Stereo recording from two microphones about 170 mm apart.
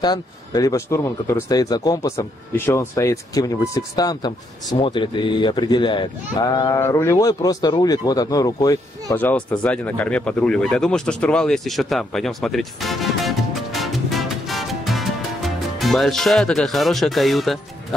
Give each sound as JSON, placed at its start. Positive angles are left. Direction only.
{"t": 0.0, "sound": "speech", "side_deg": 25}
{"t": 9.1, "sound": "speech", "side_deg": 10}